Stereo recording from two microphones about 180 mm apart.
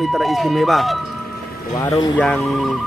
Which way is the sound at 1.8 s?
15° left (ahead or behind).